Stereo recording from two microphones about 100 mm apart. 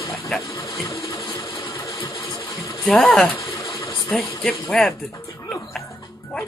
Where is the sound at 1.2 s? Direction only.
50° left (ahead or behind).